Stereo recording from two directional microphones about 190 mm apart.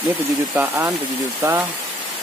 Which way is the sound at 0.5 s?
10° right (ahead or behind).